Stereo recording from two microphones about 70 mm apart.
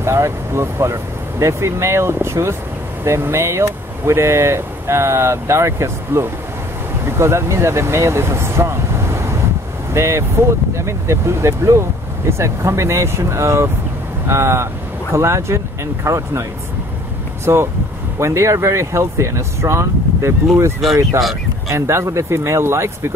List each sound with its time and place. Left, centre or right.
0.0 s speech: right
17.5 s speech: right